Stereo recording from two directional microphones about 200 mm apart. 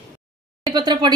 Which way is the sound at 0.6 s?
20° right (ahead or behind).